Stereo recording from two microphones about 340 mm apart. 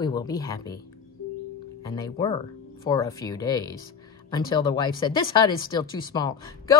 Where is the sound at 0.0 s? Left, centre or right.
Centre.